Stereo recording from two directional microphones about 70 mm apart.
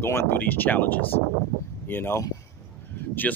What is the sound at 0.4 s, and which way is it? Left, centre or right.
Speech, left.